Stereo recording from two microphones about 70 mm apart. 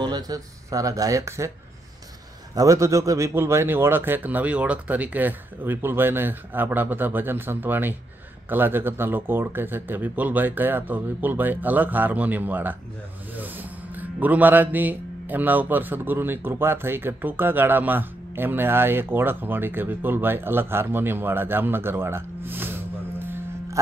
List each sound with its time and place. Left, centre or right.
0.0 s a sound: right
0.7 s speech: right
2.5 s speech: right
3.3 s a man's voice: right